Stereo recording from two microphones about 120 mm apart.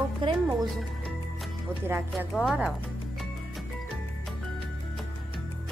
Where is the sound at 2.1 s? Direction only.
Centre (ahead or behind).